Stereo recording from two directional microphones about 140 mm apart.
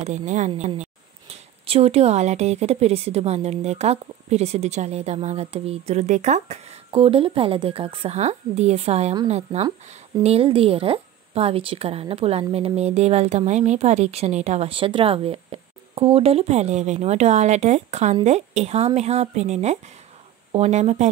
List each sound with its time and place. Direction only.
0.0 s speech: 60° right (ahead or behind)